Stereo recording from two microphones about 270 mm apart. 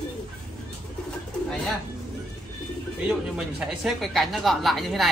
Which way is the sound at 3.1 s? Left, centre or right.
Centre.